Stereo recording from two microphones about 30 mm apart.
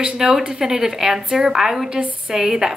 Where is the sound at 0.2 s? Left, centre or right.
Centre.